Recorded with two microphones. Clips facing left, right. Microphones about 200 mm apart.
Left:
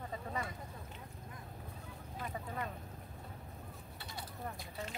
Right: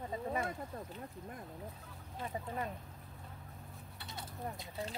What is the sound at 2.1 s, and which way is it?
Speech, 25° right (ahead or behind).